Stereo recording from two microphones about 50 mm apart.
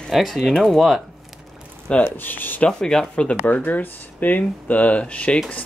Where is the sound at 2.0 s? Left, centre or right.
Left.